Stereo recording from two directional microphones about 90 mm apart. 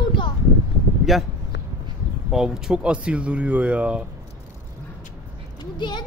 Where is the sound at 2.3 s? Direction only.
5° right (ahead or behind).